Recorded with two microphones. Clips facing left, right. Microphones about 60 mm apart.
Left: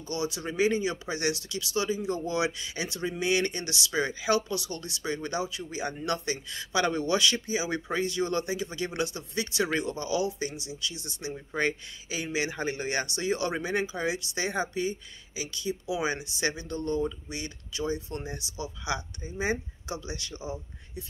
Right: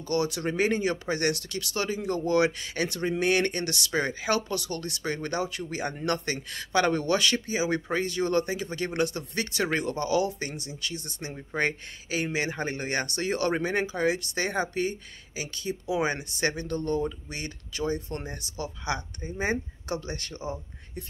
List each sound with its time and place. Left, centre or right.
0.1 s speech: right